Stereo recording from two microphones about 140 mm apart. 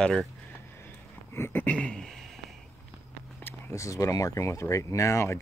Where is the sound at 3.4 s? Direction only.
20° left (ahead or behind).